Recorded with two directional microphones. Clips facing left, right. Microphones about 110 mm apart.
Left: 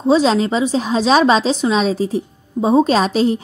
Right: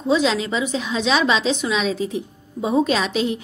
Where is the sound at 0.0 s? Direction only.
35° left (ahead or behind).